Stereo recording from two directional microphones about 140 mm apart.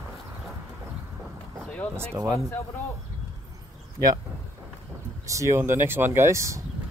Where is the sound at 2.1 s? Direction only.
15° right (ahead or behind).